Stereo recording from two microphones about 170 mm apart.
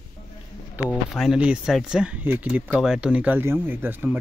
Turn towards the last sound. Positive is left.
turn(degrees=-10)  # may be behind; listen again after turning